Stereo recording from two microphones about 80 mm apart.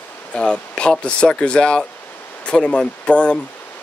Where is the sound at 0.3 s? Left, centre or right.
Centre.